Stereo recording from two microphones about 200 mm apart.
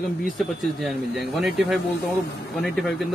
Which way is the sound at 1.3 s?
Centre (ahead or behind).